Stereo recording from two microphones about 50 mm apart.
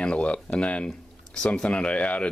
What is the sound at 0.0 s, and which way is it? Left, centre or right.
Speech, left.